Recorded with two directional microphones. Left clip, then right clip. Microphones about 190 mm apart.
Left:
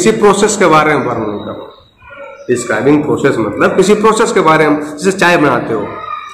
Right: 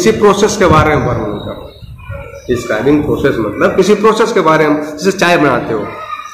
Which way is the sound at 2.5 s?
15° left (ahead or behind).